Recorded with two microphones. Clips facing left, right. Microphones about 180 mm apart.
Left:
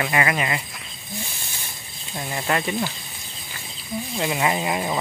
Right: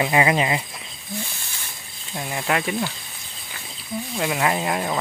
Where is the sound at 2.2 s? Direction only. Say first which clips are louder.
Even; 5° right (ahead or behind).